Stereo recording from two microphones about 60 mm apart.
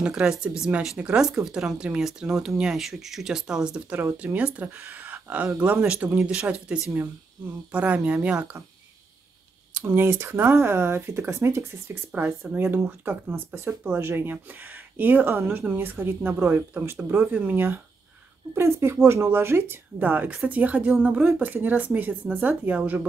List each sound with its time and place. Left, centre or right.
0.0 s speech: centre
3.9 s speech: right
9.8 s speech: right
17.1 s speech: right
18.6 s speech: right
20.0 s speech: right